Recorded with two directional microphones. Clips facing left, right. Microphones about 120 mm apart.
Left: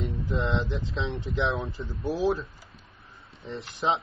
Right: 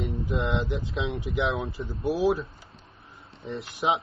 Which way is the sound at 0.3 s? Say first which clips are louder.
Even; 25° right (ahead or behind).